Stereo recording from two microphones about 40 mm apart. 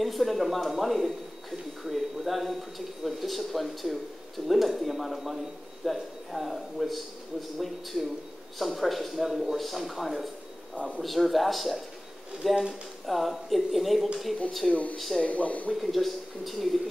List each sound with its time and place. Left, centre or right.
0.0 s speech: centre
14.7 s speech: left
15.0 s speech: centre
15.2 s speech: left
15.8 s speech: centre